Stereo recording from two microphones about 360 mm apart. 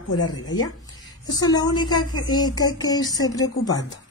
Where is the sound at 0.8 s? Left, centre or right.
Centre.